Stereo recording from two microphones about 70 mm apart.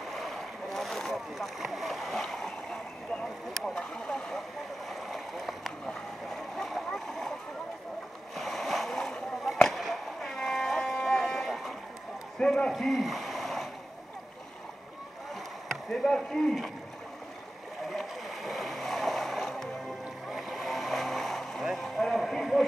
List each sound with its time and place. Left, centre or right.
0.1 s boat: centre
3.5 s a sound: centre
4.8 s rowboat: centre
6.3 s splash: centre
8.4 s splash: centre
9.6 s a sound: centre
12.4 s a man's voice: centre
12.7 s a sound: centre
15.9 s speech: centre
17.8 s boat: centre